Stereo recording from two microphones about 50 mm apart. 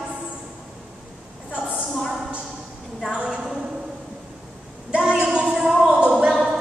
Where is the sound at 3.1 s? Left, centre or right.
Centre.